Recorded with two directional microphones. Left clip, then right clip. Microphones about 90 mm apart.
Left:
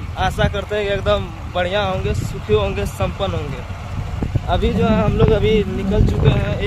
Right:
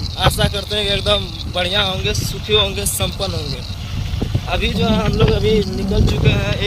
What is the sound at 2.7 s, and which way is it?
Speech, centre (ahead or behind).